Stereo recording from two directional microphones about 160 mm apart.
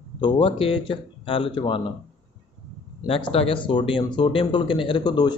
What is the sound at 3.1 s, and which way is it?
Speech, 35° left (ahead or behind).